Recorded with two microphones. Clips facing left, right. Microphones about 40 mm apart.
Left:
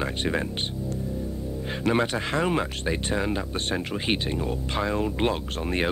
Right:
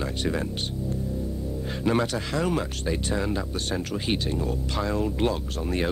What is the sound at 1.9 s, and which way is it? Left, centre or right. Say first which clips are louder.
Speech: left 1 dB; left.